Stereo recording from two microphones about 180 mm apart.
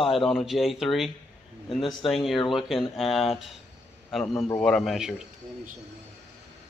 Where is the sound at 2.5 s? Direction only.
Centre (ahead or behind).